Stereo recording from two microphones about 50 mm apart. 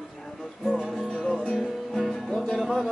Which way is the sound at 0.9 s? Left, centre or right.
Centre.